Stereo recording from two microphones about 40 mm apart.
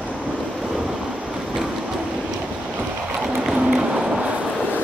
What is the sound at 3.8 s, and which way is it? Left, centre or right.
Music, centre.